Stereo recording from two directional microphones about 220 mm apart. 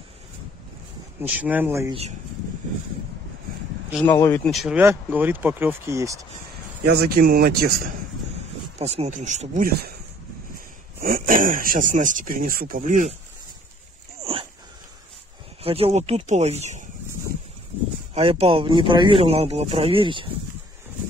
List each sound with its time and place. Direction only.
1.2 s speech: 5° right (ahead or behind)
4.0 s speech: 10° left (ahead or behind); by 6.1 s 15° right (ahead or behind)
6.9 s speech: 45° right (ahead or behind)
8.7 s speech: 30° right (ahead or behind)
11.0 s speech: 40° right (ahead or behind)
15.6 s speech: 25° right (ahead or behind)
18.1 s speech: 25° right (ahead or behind)